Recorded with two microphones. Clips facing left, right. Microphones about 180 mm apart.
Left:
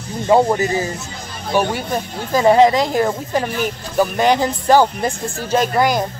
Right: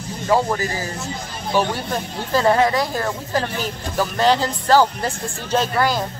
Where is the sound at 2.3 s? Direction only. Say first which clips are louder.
Left 5 dB; 15° left (ahead or behind).